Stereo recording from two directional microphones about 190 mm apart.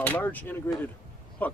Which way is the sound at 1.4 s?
10° left (ahead or behind).